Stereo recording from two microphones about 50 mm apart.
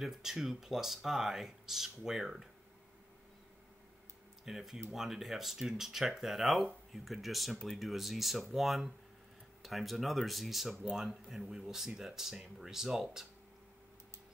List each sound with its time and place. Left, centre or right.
0.0 s speech: centre
4.5 s speech: centre